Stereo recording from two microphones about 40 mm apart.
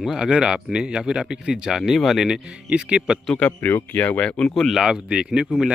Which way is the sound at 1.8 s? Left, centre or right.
Centre.